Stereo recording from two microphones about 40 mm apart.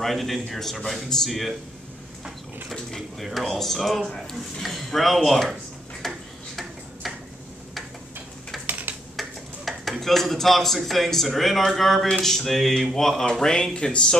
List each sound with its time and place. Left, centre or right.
0.0 s speech: centre
3.2 s speech: centre
6.0 s tick-tock: centre
8.6 s typing: right
9.7 s speech: centre; by 14.0 s left